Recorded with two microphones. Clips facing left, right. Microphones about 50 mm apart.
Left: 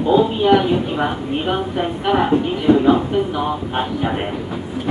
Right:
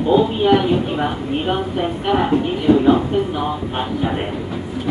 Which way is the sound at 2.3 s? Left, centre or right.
Left.